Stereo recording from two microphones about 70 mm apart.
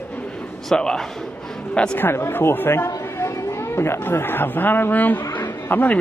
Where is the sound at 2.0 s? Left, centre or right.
Left.